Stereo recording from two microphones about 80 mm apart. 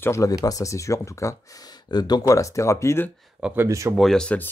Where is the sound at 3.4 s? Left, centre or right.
Right.